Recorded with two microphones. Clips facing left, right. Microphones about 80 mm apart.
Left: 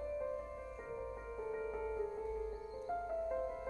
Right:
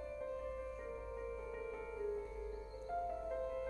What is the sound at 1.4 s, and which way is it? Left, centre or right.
Music, left.